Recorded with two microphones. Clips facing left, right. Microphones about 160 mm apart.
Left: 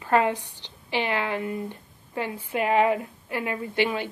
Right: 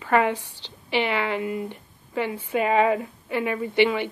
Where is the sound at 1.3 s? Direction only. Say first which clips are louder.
Right 2 dB; 15° right (ahead or behind).